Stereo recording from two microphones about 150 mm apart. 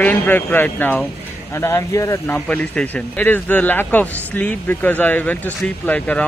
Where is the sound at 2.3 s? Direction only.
10° left (ahead or behind).